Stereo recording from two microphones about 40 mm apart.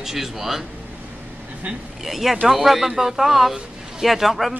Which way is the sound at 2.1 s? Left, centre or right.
Centre.